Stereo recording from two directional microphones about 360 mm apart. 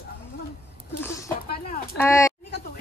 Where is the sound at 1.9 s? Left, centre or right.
Centre.